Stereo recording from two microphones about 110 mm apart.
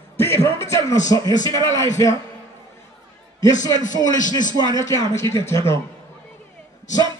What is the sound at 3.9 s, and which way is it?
A man's voice, 35° left (ahead or behind).